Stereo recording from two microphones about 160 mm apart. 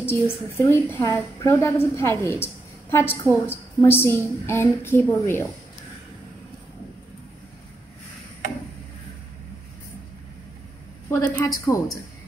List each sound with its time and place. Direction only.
0.0 s a woman's voice: 15° left (ahead or behind)
11.1 s a woman's voice: 20° left (ahead or behind)